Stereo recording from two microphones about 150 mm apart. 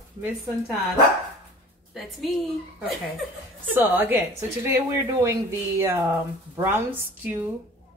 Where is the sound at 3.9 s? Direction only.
15° right (ahead or behind).